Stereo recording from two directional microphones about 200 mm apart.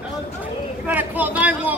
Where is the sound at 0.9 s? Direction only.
10° right (ahead or behind).